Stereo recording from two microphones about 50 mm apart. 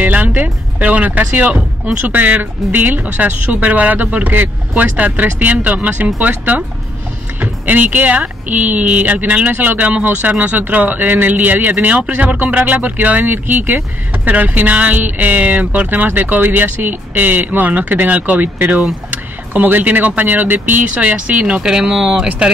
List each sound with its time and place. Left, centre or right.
0.0 s music: right
2.0 s speech: right
20.8 s speech: right; by 22.3 s centre